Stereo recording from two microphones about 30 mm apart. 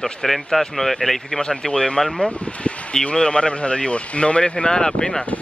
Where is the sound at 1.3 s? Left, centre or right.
Left.